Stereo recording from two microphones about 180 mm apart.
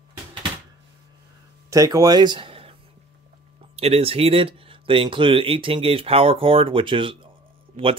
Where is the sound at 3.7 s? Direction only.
35° right (ahead or behind).